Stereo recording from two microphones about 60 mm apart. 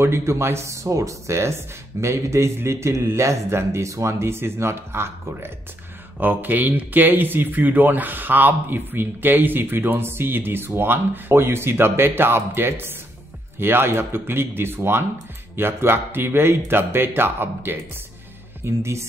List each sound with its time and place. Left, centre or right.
0.0 s speech: right
6.1 s speech: right
18.6 s speech: right